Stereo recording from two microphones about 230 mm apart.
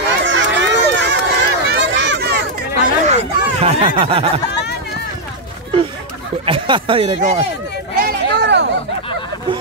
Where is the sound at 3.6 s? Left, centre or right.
Right.